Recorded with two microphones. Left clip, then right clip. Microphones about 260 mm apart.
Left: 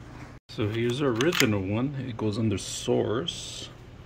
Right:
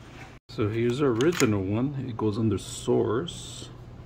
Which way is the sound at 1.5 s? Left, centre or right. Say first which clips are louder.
Right 1 dB; centre.